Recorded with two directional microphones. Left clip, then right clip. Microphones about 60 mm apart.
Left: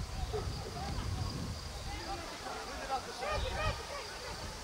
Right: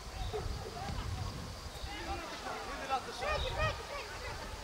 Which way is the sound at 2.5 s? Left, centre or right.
Right.